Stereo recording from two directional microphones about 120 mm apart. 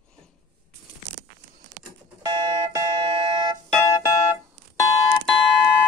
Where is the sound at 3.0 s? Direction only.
40° right (ahead or behind).